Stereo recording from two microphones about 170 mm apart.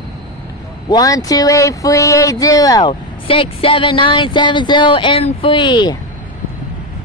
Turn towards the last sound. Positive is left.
turn(degrees=25)  # may be behind; listen again after turning